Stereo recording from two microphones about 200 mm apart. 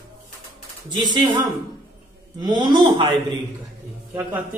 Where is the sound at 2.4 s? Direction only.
20° right (ahead or behind).